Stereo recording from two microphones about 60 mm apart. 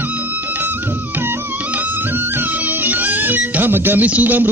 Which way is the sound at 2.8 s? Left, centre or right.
Right.